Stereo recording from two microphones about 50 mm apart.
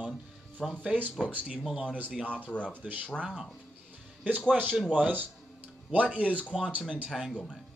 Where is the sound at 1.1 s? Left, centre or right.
Right.